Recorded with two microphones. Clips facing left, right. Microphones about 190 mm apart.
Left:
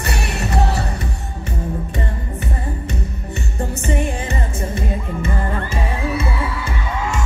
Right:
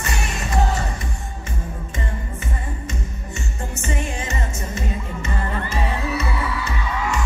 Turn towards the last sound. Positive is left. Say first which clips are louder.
# left 1 dB
turn(degrees=50)  # may be behind; listen again after turning